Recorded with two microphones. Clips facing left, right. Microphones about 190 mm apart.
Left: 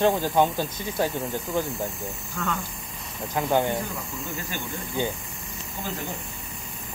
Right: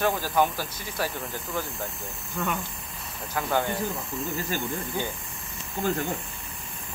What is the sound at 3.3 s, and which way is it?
Speech, 20° left (ahead or behind).